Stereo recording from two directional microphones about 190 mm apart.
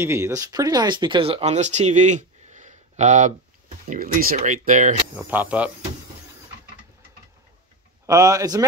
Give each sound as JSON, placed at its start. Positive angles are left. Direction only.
{"t": 0.0, "sound": "speech", "side_deg": -15}
{"t": 5.1, "sound": "speech", "side_deg": -10}
{"t": 8.1, "sound": "speech", "side_deg": -20}